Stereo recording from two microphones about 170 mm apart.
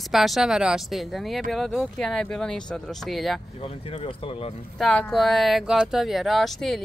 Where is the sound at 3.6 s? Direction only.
35° left (ahead or behind).